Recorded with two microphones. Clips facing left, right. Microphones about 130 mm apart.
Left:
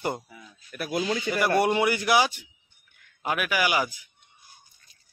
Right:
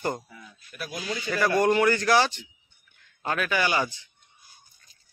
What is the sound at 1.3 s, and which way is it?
A man's voice, 15° left (ahead or behind).